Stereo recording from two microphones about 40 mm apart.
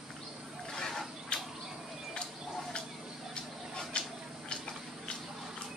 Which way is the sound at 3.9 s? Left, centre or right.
Left.